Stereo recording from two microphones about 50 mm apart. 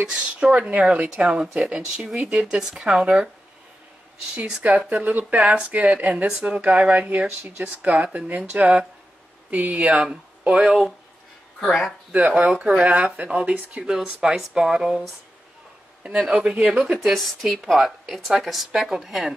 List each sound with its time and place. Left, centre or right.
0.0 s speech: centre
1.8 s speech: centre
2.8 s speech: right
4.6 s speech: right
11.6 s speech: centre
12.3 s speech: right
16.6 s a woman's voice: centre